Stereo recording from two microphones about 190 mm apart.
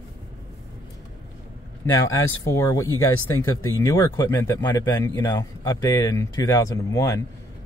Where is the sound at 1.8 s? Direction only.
15° left (ahead or behind).